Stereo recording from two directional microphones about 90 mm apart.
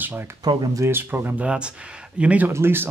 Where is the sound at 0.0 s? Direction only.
25° right (ahead or behind).